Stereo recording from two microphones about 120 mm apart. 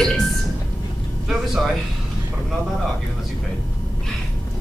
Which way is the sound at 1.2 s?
Centre (ahead or behind).